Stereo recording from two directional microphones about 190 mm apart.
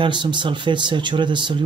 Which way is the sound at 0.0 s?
25° right (ahead or behind).